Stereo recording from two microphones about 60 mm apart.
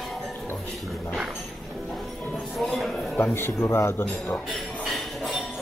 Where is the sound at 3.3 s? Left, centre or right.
Left.